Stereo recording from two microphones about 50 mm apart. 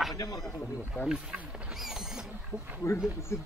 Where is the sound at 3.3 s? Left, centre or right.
Left.